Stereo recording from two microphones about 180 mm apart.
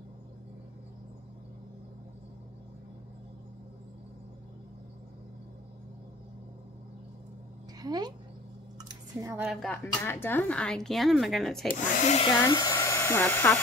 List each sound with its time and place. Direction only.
7.8 s speech: 20° right (ahead or behind)
8.7 s squish: 20° right (ahead or behind)
9.4 s a woman's voice: centre (ahead or behind)
9.9 s a woman's voice: 10° left (ahead or behind)
11.8 s hair dryer: 45° left (ahead or behind)
12.4 s speech: 20° left (ahead or behind)